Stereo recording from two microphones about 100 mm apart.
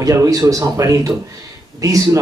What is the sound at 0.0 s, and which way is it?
A man's voice, 35° right (ahead or behind).